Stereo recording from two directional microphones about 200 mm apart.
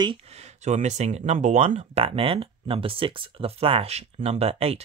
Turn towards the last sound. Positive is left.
turn(degrees=-30)  # may be behind; listen again after turning